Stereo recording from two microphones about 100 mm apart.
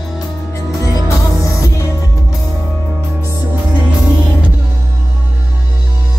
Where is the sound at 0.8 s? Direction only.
30° left (ahead or behind).